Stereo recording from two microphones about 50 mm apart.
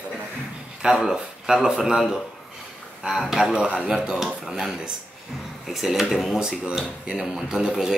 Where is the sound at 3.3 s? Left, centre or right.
Centre.